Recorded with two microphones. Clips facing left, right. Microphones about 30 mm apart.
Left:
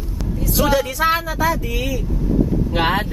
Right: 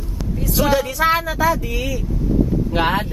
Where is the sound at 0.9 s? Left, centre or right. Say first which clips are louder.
Right 1 dB; right.